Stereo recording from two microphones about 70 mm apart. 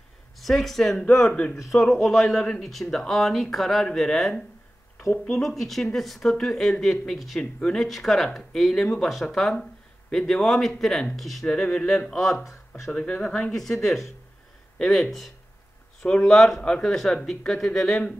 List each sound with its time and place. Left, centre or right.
0.4 s speech: centre
11.4 s speech: centre
12.1 s speech: centre
12.9 s speech: centre
13.5 s speech: centre